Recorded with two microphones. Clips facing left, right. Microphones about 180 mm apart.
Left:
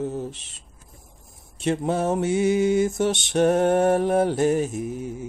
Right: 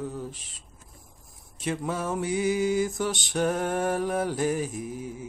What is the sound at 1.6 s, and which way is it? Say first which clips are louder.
Mantra: left 7 dB; 25° left (ahead or behind).